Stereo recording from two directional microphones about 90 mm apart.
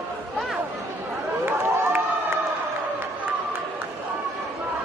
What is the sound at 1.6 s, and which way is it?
Run, 30° right (ahead or behind).